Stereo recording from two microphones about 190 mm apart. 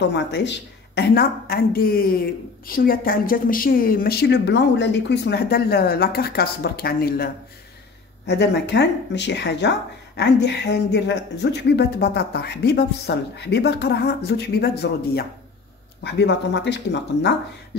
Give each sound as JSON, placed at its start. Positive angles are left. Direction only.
{"t": 0.0, "sound": "speech", "side_deg": 65}
{"t": 8.3, "sound": "speech", "side_deg": 65}